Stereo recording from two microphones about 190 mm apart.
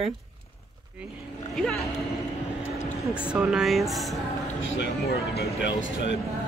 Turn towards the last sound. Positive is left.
turn(degrees=70)  # may be behind; listen again after turning